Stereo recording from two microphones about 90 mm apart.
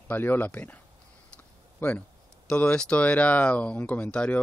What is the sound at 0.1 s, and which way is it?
Speech, 20° left (ahead or behind).